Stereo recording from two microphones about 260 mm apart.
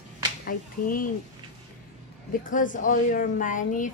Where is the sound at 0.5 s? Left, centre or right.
Left.